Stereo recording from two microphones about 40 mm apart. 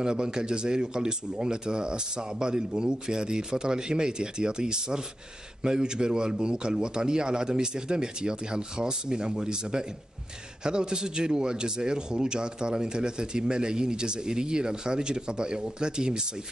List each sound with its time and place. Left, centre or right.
0.0 s speech: centre